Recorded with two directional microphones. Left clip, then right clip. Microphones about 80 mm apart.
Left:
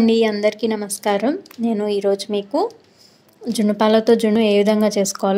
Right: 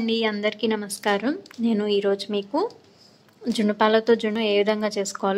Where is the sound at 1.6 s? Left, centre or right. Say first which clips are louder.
Left 2 dB; centre.